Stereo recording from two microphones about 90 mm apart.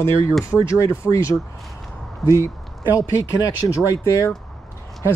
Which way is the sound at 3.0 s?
40° left (ahead or behind).